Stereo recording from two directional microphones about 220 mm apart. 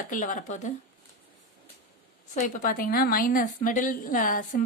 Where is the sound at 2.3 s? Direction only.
35° left (ahead or behind).